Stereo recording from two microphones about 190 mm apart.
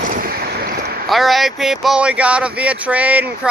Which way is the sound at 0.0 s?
50° right (ahead or behind).